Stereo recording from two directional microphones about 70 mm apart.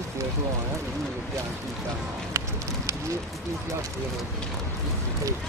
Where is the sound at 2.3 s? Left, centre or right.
Right.